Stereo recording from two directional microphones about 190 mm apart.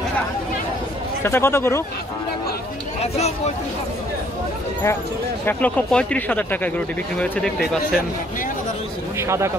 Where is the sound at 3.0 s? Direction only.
35° left (ahead or behind).